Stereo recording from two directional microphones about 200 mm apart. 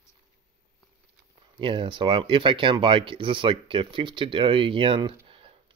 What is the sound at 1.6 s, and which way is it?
Speech, 25° right (ahead or behind).